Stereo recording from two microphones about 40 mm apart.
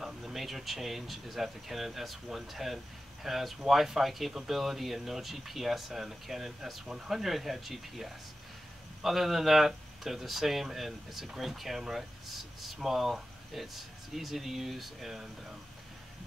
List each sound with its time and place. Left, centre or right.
0.0 s speech: centre